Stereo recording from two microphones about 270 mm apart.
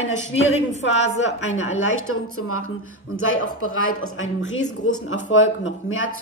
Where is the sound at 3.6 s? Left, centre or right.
Left.